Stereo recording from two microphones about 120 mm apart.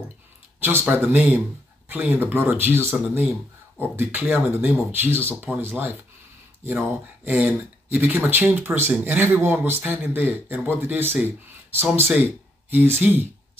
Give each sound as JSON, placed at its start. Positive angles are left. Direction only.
{"t": 0.6, "sound": "speech", "side_deg": -15}
{"t": 7.2, "sound": "speech", "side_deg": -10}